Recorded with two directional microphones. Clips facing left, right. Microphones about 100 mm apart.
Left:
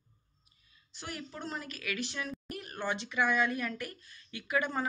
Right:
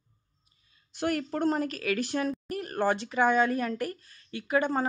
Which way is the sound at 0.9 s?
60° right (ahead or behind).